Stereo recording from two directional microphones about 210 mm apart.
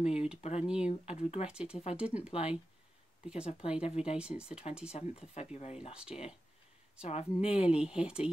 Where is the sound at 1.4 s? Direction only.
5° right (ahead or behind).